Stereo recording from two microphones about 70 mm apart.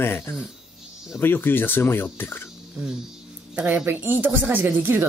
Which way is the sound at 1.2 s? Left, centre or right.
Left.